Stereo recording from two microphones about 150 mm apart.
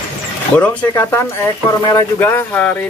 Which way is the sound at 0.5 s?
10° left (ahead or behind).